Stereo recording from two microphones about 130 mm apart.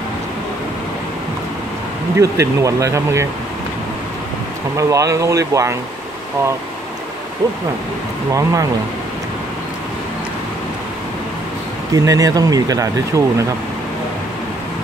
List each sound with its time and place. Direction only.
2.1 s speech: 25° right (ahead or behind)
4.7 s speech: 25° right (ahead or behind)
8.3 s speech: 25° right (ahead or behind)
11.9 s speech: 25° right (ahead or behind)